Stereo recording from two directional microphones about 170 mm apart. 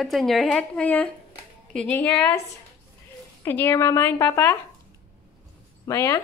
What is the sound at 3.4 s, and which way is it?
A woman's voice, 15° left (ahead or behind).